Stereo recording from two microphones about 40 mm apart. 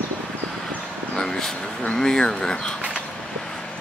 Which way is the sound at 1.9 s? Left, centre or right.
Centre.